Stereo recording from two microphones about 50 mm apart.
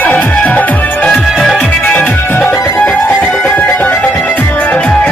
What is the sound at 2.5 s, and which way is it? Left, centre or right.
Music, left.